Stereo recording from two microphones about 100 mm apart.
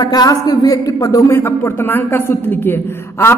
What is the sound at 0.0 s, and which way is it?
A man's voice, 40° left (ahead or behind).